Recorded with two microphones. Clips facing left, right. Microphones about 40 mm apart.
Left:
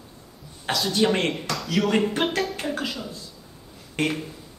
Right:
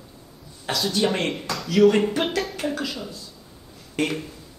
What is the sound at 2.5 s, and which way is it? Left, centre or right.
Speech, centre.